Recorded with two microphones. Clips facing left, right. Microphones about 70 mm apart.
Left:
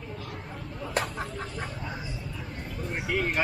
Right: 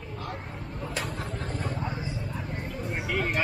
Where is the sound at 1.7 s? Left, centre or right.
Right.